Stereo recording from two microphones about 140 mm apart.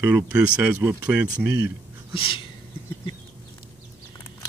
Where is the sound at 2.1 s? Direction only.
40° left (ahead or behind).